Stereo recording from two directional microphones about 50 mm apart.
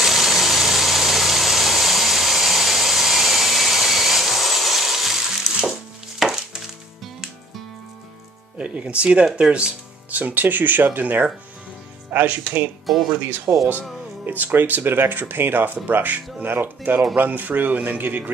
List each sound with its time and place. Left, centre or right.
0.0 s vehicle: centre
5.7 s music: centre
8.5 s speech: right
10.1 s speech: right
13.5 s speech: right
14.2 s speech: right